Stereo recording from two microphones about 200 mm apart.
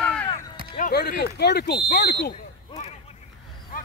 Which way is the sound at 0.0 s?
5° left (ahead or behind).